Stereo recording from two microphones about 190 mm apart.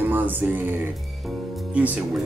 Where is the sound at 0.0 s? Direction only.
10° right (ahead or behind).